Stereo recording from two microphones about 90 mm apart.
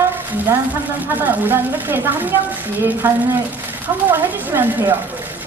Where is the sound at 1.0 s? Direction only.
20° right (ahead or behind).